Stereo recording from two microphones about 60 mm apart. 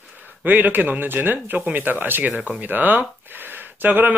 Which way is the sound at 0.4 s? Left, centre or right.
Right.